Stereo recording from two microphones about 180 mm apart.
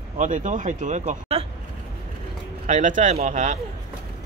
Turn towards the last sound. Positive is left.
turn(degrees=-40)  # may be behind; listen again after turning